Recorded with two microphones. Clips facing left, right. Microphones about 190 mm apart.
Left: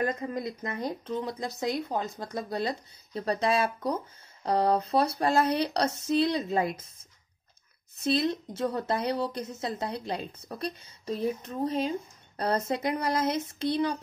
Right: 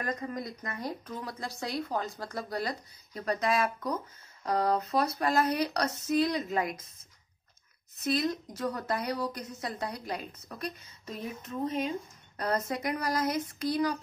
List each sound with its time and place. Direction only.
0.0 s speech: 25° left (ahead or behind)
8.0 s speech: 30° left (ahead or behind)